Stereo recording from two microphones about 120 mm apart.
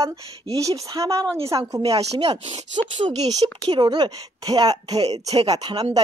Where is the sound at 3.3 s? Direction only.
35° right (ahead or behind).